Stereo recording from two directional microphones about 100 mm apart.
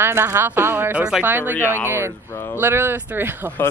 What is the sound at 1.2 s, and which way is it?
Speech, 20° right (ahead or behind).